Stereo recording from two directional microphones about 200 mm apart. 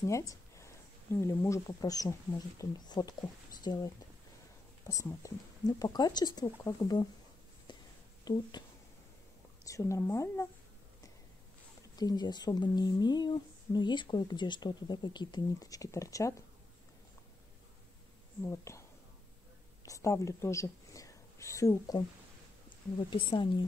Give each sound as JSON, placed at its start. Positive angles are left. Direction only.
{"t": 0.0, "sound": "speech", "side_deg": 15}
{"t": 7.7, "sound": "a sound", "side_deg": 25}
{"t": 8.3, "sound": "speech", "side_deg": 20}
{"t": 9.7, "sound": "a woman's voice", "side_deg": 15}
{"t": 12.0, "sound": "speech", "side_deg": 20}
{"t": 18.4, "sound": "a woman's voice", "side_deg": 15}
{"t": 19.8, "sound": "a sound", "side_deg": 15}
{"t": 23.0, "sound": "speech", "side_deg": 25}